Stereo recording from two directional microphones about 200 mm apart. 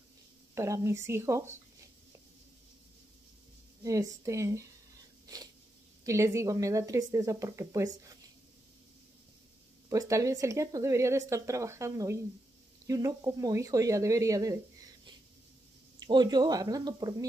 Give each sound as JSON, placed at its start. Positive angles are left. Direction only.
{"t": 0.6, "sound": "speech", "side_deg": -15}
{"t": 3.8, "sound": "speech", "side_deg": -15}
{"t": 5.2, "sound": "a sound", "side_deg": -20}
{"t": 6.0, "sound": "speech", "side_deg": -15}
{"t": 9.8, "sound": "speech", "side_deg": -15}